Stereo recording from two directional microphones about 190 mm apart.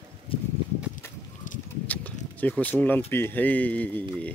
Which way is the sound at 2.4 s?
10° left (ahead or behind).